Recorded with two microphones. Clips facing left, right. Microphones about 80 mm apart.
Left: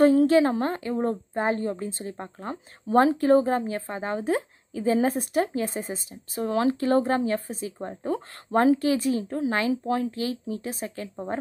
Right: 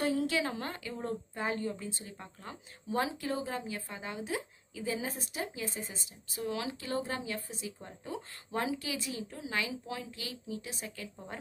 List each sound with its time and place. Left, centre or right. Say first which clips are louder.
0.0 s a woman's voice: left 13 dB; left